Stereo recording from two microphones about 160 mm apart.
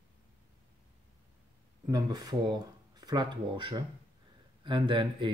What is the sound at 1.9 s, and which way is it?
Speech, 25° right (ahead or behind).